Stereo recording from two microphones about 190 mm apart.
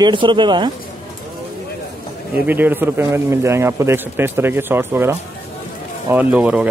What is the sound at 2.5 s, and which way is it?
A man's voice, 10° right (ahead or behind).